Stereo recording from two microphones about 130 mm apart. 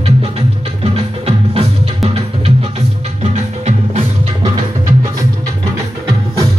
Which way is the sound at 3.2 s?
60° right (ahead or behind).